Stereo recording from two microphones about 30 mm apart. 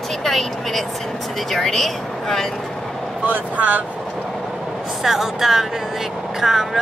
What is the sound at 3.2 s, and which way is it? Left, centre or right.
Speech, right.